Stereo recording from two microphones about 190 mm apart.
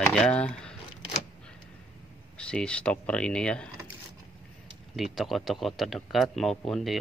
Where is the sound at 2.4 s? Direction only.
5° left (ahead or behind).